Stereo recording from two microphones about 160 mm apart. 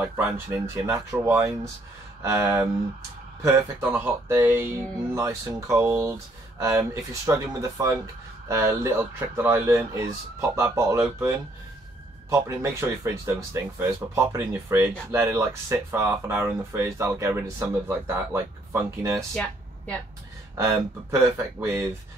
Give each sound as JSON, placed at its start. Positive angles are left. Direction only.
{"t": 0.0, "sound": "speech", "side_deg": -15}
{"t": 19.3, "sound": "a sound", "side_deg": 5}
{"t": 20.5, "sound": "speech", "side_deg": -15}